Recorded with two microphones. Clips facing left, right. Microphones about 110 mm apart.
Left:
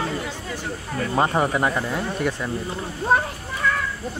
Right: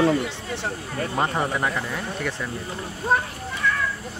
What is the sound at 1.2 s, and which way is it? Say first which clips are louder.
Speech: left 4 dB; 25° left (ahead or behind).